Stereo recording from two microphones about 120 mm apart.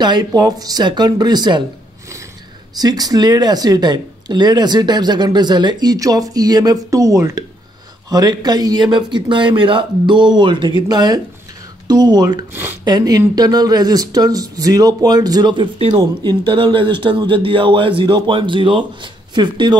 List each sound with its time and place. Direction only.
0.0 s speech: 35° right (ahead or behind)
2.8 s a man's voice: 30° right (ahead or behind)